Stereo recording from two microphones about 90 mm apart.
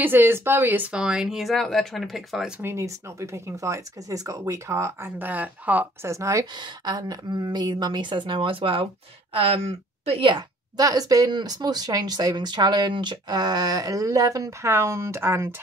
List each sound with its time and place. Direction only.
0.0 s speech: 25° right (ahead or behind)
0.9 s speech: 10° right (ahead or behind)
2.6 s speech: 30° right (ahead or behind)
6.0 s speech: 35° right (ahead or behind)
6.5 s a woman's voice: 50° right (ahead or behind); by 8.8 s 80° right
9.3 s speech: 90° right
10.0 s a woman's voice: 65° right (ahead or behind)
10.8 s speech: 45° right (ahead or behind)